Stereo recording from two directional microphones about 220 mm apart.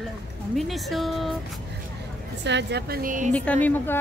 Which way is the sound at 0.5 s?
Centre (ahead or behind).